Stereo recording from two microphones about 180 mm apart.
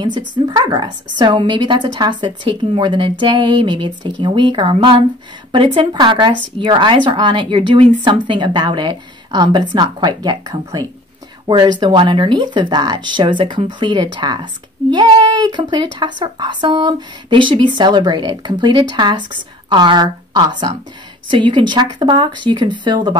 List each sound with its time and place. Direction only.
0.0 s speech: 25° right (ahead or behind)